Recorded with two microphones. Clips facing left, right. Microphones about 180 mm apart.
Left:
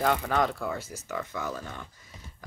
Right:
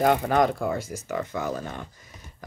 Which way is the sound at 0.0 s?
45° right (ahead or behind).